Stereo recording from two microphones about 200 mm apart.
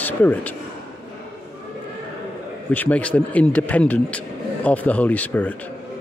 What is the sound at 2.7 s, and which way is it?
A man's voice, 5° left (ahead or behind).